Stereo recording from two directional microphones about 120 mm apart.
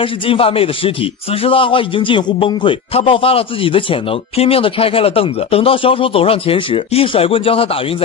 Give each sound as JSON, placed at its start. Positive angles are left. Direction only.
{"t": 0.0, "sound": "a man's voice", "side_deg": 50}